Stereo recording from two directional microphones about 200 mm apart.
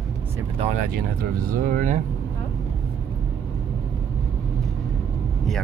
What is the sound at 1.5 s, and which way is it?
Speech, 40° right (ahead or behind).